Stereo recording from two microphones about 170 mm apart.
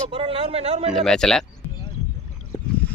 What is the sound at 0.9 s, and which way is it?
Speech, centre (ahead or behind).